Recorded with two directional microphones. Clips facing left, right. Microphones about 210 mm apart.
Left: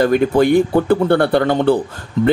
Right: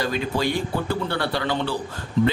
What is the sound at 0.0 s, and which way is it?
Speech, 55° left (ahead or behind).